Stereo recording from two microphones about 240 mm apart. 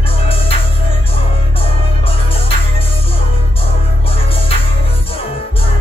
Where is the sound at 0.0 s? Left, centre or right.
Left.